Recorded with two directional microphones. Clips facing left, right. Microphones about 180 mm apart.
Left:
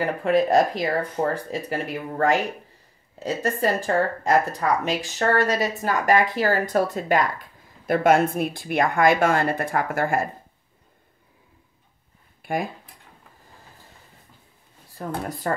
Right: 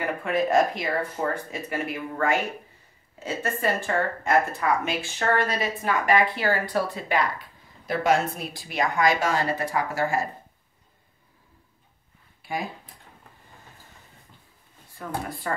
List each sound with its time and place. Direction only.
0.0 s speech: 35° left (ahead or behind); by 10.2 s 55° left (ahead or behind)
12.4 s a sound: 55° left (ahead or behind)
15.2 s speech: 40° left (ahead or behind)